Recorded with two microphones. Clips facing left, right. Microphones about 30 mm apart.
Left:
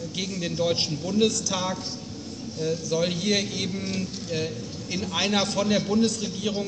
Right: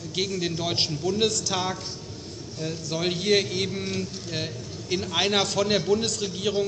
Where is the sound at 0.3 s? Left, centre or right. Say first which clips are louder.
Left 2 dB; right.